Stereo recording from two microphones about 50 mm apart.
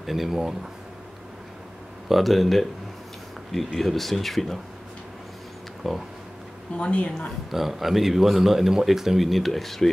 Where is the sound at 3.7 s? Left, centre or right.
Centre.